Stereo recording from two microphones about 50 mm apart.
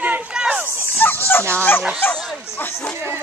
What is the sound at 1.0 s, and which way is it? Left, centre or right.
Speech, left.